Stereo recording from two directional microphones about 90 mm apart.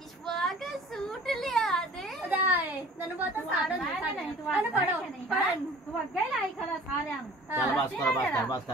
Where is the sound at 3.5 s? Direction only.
15° right (ahead or behind).